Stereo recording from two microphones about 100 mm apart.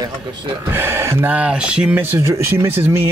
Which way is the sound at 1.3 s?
10° right (ahead or behind).